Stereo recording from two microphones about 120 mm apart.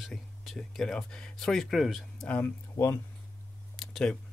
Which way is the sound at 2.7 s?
20° left (ahead or behind).